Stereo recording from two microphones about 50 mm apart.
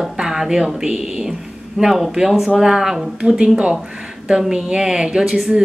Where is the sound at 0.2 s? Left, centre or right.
Centre.